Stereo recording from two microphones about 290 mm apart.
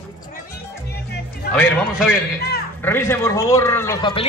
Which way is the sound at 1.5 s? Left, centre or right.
Centre.